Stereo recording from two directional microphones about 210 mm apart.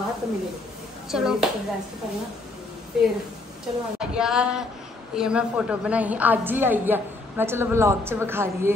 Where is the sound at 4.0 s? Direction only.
5° right (ahead or behind).